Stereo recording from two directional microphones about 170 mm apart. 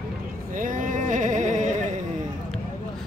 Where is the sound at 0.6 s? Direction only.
50° right (ahead or behind).